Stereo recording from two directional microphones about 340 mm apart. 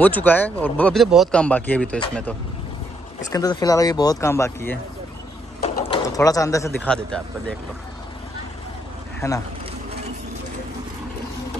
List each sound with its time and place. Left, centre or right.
0.0 s speech: centre
3.3 s speech: centre
9.2 s speech: centre